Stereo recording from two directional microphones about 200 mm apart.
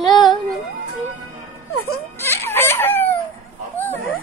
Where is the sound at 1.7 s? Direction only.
90° left.